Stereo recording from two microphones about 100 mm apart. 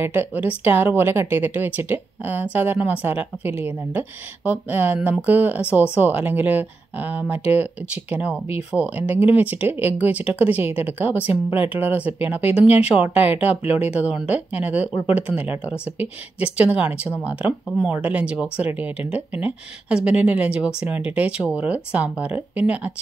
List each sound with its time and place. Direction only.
0.0 s a woman's voice: 20° right (ahead or behind)